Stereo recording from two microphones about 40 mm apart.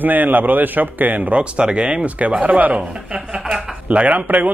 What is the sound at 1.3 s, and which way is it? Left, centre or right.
Speech, right.